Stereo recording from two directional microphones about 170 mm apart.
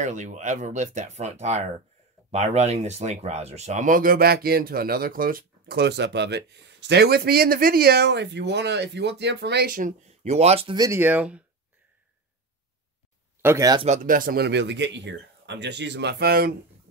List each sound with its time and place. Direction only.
0.0 s speech: 45° right (ahead or behind)
10.2 s speech: 40° right (ahead or behind)
10.8 s speech: 15° right (ahead or behind)
13.4 s speech: 15° right (ahead or behind)
13.8 s speech: 50° right (ahead or behind)